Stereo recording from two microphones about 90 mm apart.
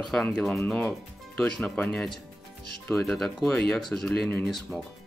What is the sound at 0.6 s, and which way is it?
Speech, 20° left (ahead or behind).